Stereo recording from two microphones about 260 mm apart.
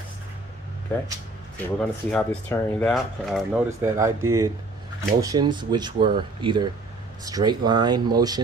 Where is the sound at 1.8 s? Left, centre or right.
Centre.